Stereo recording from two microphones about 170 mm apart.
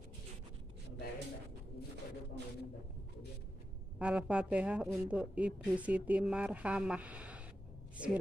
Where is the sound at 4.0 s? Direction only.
5° right (ahead or behind).